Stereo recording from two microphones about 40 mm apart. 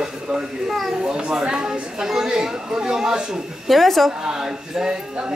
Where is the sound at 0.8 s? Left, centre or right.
Centre.